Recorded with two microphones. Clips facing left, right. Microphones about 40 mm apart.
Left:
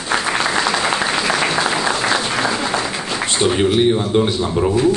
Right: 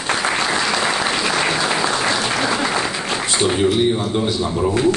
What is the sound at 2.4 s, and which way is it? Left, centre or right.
Applause, centre.